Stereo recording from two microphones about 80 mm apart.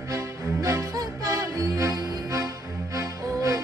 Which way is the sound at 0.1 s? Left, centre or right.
Right.